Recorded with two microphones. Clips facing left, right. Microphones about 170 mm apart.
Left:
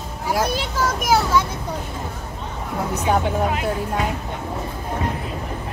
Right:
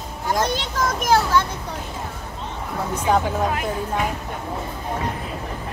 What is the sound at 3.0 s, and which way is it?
Speech, 20° left (ahead or behind).